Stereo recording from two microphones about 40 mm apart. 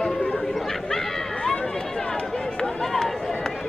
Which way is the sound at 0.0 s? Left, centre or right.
Left.